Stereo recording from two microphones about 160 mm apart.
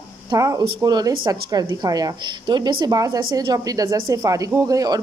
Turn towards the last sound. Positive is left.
turn(degrees=-25)  # may be behind; listen again after turning